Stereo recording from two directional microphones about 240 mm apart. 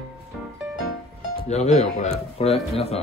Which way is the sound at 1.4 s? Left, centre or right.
Left.